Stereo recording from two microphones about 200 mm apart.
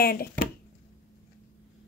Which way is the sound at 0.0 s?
50° left (ahead or behind).